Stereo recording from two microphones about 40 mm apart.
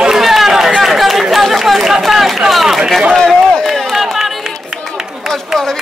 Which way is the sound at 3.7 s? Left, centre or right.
Centre.